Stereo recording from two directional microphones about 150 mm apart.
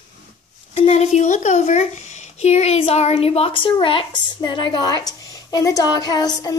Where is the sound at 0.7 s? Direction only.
45° left (ahead or behind); by 6.6 s 25° left (ahead or behind).